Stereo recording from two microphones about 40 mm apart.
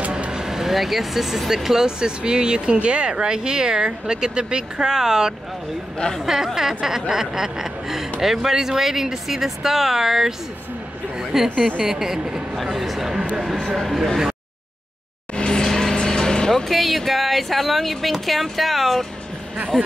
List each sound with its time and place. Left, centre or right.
0.1 s speech: centre
11.1 s a sound: centre
11.8 s speech: centre
15.3 s music: left
15.6 s vehicle: centre
16.7 s speech: centre